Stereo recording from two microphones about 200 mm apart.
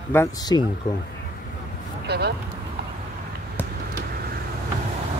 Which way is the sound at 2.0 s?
55° right (ahead or behind).